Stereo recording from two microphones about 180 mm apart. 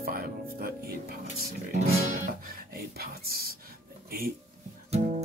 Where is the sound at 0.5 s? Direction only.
55° right (ahead or behind).